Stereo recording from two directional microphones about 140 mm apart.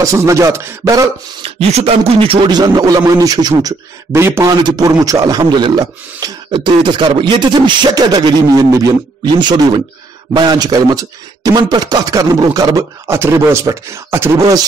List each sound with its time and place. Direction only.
0.0 s a man's voice: 20° right (ahead or behind)
1.4 s a man's voice: 45° right (ahead or behind); by 14.6 s 20° right (ahead or behind)